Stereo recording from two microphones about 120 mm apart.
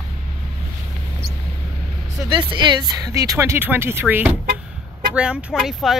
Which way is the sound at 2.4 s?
40° right (ahead or behind).